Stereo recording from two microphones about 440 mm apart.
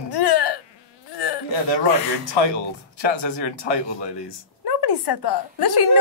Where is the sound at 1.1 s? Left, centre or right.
Left.